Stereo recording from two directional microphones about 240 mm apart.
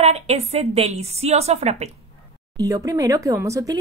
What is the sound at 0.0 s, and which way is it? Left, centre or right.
A woman's voice, right.